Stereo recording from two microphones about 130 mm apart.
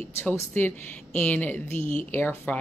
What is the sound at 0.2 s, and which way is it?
A woman's voice, 15° left (ahead or behind).